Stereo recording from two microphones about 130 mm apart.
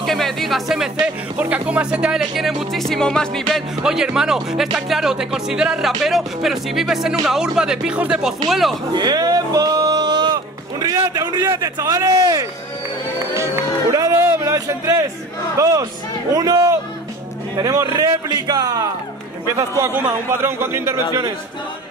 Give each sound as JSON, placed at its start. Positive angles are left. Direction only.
{"t": 0.0, "sound": "speech", "side_deg": 0}
{"t": 8.9, "sound": "speech", "side_deg": -30}
{"t": 13.9, "sound": "a man's voice", "side_deg": -25}
{"t": 19.8, "sound": "speech", "side_deg": -15}